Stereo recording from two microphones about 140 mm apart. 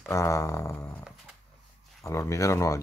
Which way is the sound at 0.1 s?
20° left (ahead or behind).